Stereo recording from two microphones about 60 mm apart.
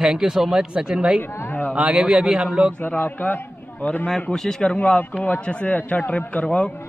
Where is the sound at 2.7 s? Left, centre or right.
Left.